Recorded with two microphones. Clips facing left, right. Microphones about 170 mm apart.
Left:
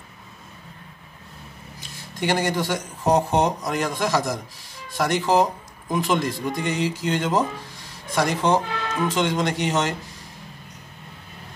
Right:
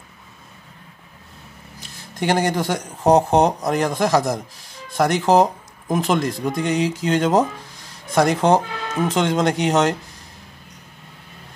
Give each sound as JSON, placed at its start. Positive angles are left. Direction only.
{"t": 2.2, "sound": "speech", "side_deg": -45}
{"t": 8.5, "sound": "speech", "side_deg": -45}